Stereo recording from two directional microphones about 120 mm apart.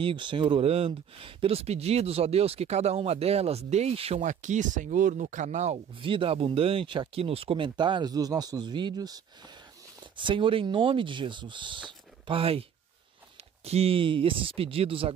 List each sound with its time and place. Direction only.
0.0 s speech: 40° right (ahead or behind)
4.2 s speech: 90° right
5.9 s speech: 45° right (ahead or behind)
10.1 s speech: 45° right (ahead or behind)
13.7 s speech: 55° right (ahead or behind)